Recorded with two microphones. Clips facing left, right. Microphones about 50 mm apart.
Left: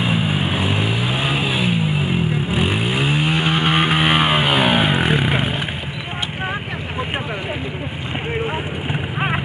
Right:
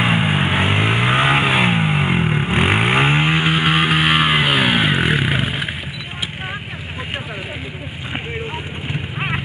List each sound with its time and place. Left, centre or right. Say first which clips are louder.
0.0 s vehicle: right 3 dB; right
3.4 s vehicle: right 1 dB; centre